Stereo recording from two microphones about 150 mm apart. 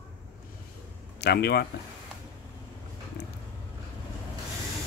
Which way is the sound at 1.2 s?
90° left.